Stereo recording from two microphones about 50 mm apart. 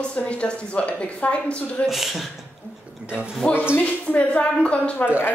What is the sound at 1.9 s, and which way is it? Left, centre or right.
Speech, centre.